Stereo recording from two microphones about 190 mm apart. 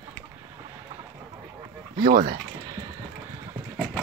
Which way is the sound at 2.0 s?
50° right (ahead or behind).